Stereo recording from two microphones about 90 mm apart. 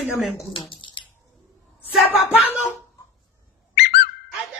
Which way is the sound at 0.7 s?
65° left (ahead or behind).